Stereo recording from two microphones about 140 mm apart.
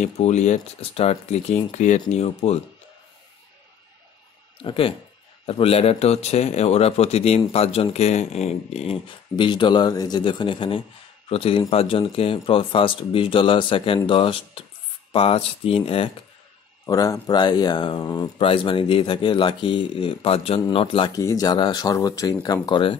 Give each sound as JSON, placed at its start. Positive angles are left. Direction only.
{"t": 0.0, "sound": "speech", "side_deg": 55}
{"t": 4.6, "sound": "speech", "side_deg": 40}
{"t": 9.4, "sound": "speech", "side_deg": 35}
{"t": 16.8, "sound": "speech", "side_deg": 25}
{"t": 21.1, "sound": "speech", "side_deg": 25}